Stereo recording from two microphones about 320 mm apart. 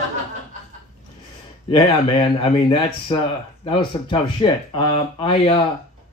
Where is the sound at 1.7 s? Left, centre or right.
Centre.